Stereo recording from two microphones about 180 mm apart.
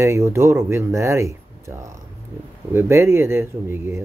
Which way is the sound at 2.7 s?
15° right (ahead or behind).